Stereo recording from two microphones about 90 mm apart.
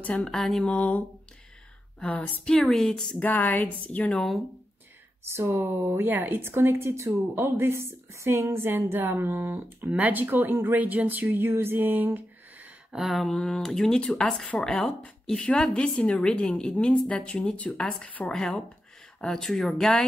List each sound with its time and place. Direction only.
0.0 s a woman's voice: 10° left (ahead or behind)
3.3 s a woman's voice: 20° left (ahead or behind)
4.1 s speech: 5° left (ahead or behind)
5.3 s a woman's voice: 30° right (ahead or behind)
12.9 s a woman's voice: centre (ahead or behind)